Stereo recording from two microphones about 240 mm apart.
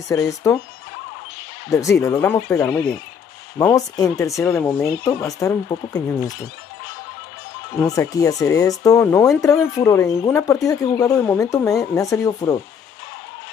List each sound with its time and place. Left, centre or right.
0.1 s speech: centre
1.7 s speech: centre
7.8 s speech: centre